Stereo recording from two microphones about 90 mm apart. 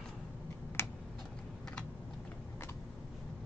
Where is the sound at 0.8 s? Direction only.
25° left (ahead or behind).